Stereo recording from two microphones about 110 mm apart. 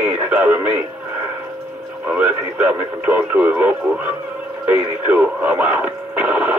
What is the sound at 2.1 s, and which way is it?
Speech, 15° right (ahead or behind).